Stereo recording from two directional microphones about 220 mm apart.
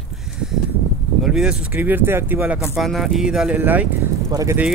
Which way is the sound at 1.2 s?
5° right (ahead or behind).